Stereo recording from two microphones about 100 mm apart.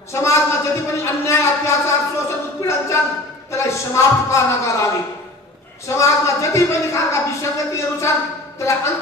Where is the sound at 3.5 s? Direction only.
30° left (ahead or behind).